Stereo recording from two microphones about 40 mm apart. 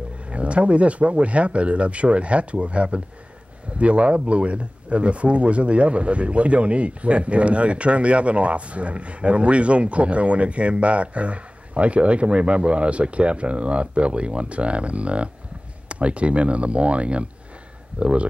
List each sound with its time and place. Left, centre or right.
0.3 s speech: right